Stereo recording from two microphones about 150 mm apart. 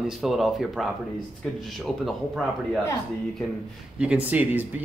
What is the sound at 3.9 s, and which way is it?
Speech, 10° right (ahead or behind).